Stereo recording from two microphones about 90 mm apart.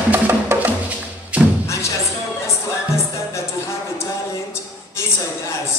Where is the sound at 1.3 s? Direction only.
15° right (ahead or behind).